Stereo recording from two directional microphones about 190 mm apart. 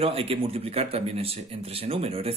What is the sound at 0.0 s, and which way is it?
A man's voice, 30° right (ahead or behind).